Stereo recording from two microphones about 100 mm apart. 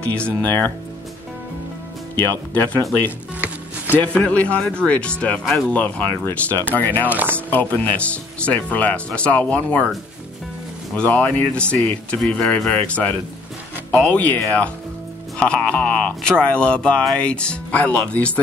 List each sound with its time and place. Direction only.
0.0 s speech: 10° left (ahead or behind)
2.1 s speech: 20° left (ahead or behind)
3.3 s music: 15° right (ahead or behind)
4.0 s speech: 15° left (ahead or behind)
6.2 s speech: 20° left (ahead or behind)
7.1 s chopping: 15° right (ahead or behind)
7.3 s speech: 15° left (ahead or behind)
11.0 s speech: 15° left (ahead or behind)